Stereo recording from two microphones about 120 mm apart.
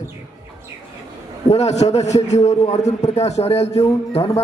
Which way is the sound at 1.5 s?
65° left (ahead or behind).